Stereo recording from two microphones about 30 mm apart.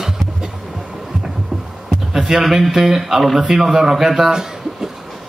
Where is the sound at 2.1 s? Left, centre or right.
Centre.